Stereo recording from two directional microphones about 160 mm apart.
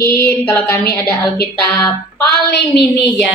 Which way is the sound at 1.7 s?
10° left (ahead or behind).